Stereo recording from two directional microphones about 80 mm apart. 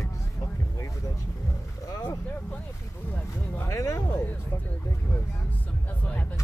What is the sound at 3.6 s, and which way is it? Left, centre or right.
Speech, left.